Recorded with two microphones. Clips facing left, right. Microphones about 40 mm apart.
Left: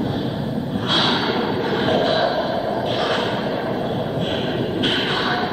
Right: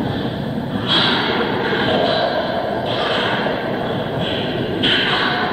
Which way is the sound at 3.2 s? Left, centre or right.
Right.